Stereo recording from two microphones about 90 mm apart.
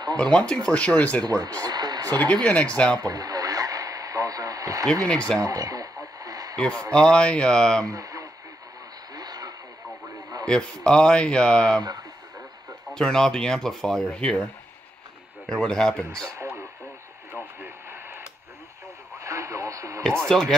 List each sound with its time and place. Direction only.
0.2 s speech: 10° left (ahead or behind)
1.2 s speech: 45° right (ahead or behind)
2.1 s speech: 15° left (ahead or behind)
3.0 s radio: 45° right (ahead or behind)
6.5 s speech: 10° left (ahead or behind)
7.8 s speech: 40° right (ahead or behind)
9.1 s radio: 45° right (ahead or behind)
10.4 s speech: 10° left (ahead or behind)
12.9 s speech: 5° left (ahead or behind)
15.4 s speech: 5° left (ahead or behind)
16.3 s radio: 30° right (ahead or behind)
20.2 s speech: 5° left (ahead or behind)